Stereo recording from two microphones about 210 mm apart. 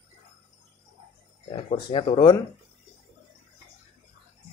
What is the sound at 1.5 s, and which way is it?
Speech, 25° left (ahead or behind).